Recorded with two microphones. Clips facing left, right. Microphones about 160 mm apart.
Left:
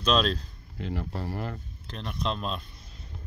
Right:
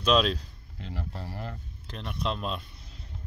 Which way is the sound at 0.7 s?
65° left (ahead or behind).